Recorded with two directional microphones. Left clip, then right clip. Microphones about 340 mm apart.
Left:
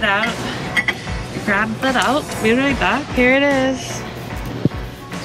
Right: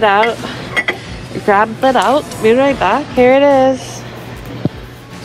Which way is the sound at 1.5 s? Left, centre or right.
Centre.